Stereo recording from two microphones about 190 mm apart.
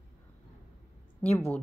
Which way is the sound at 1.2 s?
10° left (ahead or behind).